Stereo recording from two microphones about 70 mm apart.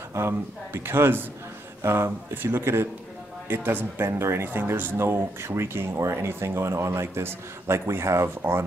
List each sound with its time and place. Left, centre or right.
0.1 s a man's voice: right